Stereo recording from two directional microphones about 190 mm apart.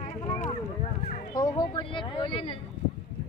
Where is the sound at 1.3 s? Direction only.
20° left (ahead or behind).